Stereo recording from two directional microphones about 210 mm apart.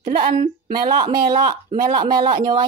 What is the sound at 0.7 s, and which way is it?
Speech, 20° right (ahead or behind).